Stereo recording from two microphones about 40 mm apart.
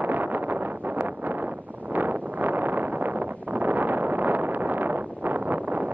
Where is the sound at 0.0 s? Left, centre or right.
Right.